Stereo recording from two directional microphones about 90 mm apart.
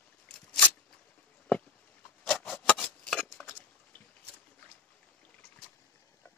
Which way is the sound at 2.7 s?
10° left (ahead or behind).